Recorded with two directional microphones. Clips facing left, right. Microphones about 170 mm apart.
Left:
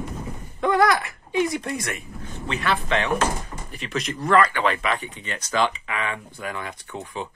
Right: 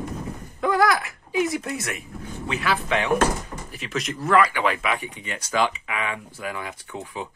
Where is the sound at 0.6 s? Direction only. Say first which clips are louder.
Left 1 dB; centre (ahead or behind).